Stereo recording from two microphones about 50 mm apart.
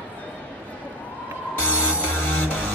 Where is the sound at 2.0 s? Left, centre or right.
Left.